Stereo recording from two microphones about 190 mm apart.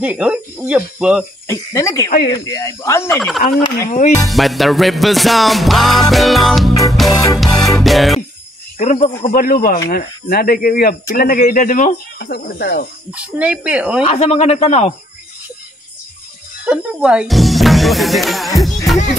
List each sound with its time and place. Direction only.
0.0 s music: 5° right (ahead or behind)
1.5 s speech: 15° left (ahead or behind)
3.2 s music: centre (ahead or behind)
8.7 s speech: 40° left (ahead or behind)
12.3 s speech: 55° left (ahead or behind)
13.1 s speech: 5° right (ahead or behind)
14.0 s speech: 35° left (ahead or behind)
16.6 s music: 5° right (ahead or behind)